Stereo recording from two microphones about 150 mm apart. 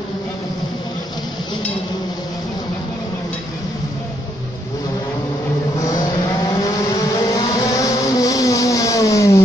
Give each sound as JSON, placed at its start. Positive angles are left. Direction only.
{"t": 5.8, "sound": "vehicle", "side_deg": 25}